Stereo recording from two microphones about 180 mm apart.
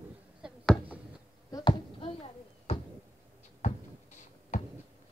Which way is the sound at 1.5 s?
30° left (ahead or behind).